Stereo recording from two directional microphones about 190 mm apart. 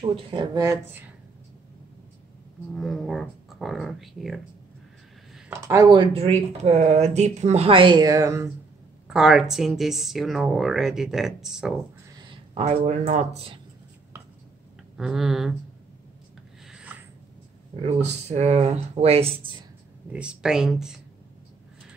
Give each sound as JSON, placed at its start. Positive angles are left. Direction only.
{"t": 0.0, "sound": "speech", "side_deg": -25}
{"t": 2.7, "sound": "speech", "side_deg": 0}
{"t": 5.5, "sound": "speech", "side_deg": -15}
{"t": 9.0, "sound": "speech", "side_deg": -5}
{"t": 12.2, "sound": "speech", "side_deg": -30}
{"t": 15.0, "sound": "speech", "side_deg": 0}
{"t": 16.6, "sound": "rub", "side_deg": -5}
{"t": 17.8, "sound": "speech", "side_deg": -35}
{"t": 20.1, "sound": "speech", "side_deg": -5}